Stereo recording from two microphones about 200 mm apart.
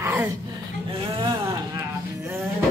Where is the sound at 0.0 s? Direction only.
15° right (ahead or behind).